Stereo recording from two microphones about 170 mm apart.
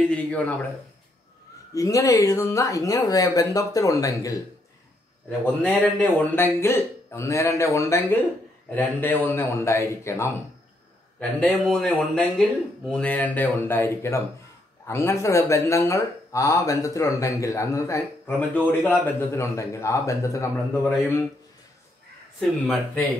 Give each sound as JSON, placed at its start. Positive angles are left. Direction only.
{"t": 0.0, "sound": "a man's voice", "side_deg": 5}
{"t": 1.7, "sound": "speech", "side_deg": 20}
{"t": 5.4, "sound": "a man's voice", "side_deg": 10}
{"t": 22.4, "sound": "speech", "side_deg": 5}